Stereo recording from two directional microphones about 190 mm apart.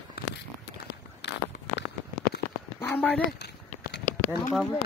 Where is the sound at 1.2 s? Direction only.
60° left (ahead or behind).